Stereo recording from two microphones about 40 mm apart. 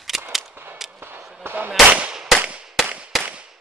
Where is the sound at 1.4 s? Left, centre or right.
Right.